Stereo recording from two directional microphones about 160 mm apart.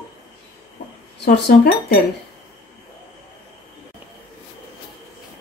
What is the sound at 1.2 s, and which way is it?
Speech, 90° left.